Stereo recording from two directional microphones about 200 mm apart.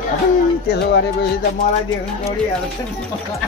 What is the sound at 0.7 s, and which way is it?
Music, 60° left (ahead or behind).